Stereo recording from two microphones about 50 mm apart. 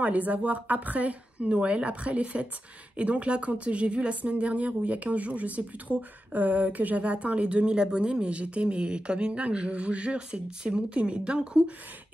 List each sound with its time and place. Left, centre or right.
0.0 s speech: right